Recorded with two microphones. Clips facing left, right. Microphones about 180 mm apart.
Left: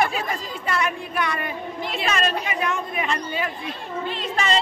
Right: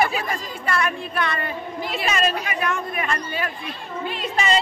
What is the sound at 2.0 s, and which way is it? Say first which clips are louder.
Speech: right 1 dB; 5° right (ahead or behind).